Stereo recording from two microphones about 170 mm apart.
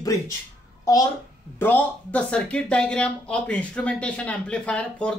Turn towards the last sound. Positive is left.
turn(degrees=5)  # may be behind; listen again after turning